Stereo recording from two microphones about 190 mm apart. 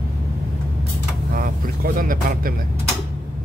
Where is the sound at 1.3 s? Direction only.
50° right (ahead or behind).